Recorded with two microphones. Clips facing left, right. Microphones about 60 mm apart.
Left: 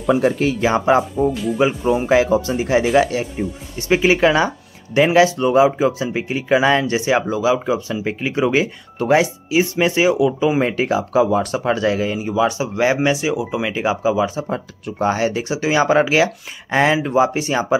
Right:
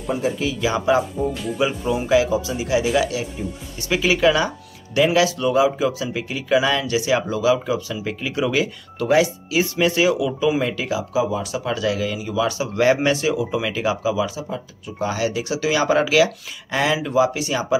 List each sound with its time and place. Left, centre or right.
0.0 s speech: left
0.4 s speech: left
1.3 s speech: centre
1.6 s speech: left
11.6 s speech: left